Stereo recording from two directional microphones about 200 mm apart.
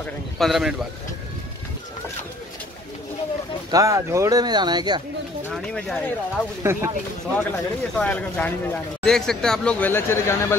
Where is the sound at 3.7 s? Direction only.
15° right (ahead or behind).